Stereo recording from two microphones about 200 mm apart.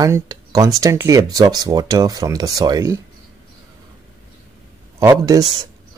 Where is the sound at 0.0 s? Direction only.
15° right (ahead or behind).